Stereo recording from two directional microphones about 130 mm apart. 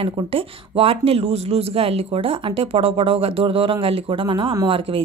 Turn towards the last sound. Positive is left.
turn(degrees=-40)  # may be behind; listen again after turning